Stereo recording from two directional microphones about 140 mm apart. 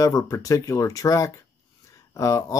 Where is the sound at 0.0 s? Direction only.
25° left (ahead or behind).